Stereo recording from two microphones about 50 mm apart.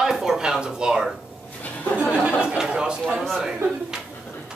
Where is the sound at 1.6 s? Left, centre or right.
Left.